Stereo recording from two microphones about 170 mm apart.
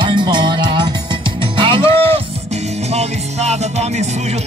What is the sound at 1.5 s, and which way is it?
Speech, 30° right (ahead or behind).